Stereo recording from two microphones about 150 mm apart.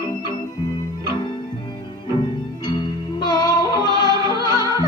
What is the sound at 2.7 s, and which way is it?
Music, 30° left (ahead or behind).